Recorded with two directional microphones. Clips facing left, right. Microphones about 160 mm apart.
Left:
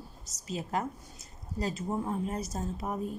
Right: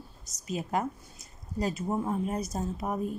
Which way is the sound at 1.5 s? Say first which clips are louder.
Right 3 dB; 15° right (ahead or behind).